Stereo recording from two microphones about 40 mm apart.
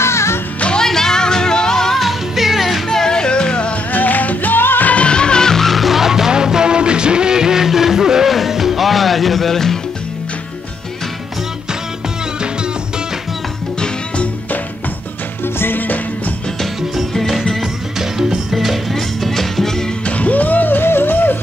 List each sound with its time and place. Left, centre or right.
0.7 s music: centre
2.0 s music: centre
2.9 s music: centre
3.9 s music: left
4.8 s music: left; by 9.8 s centre
15.4 s music: left
15.8 s music: left
17.9 s music: centre
20.1 s music: left